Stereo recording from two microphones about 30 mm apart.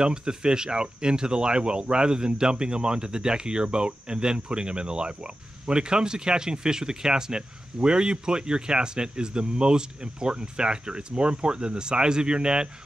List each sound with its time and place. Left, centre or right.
0.0 s speech: right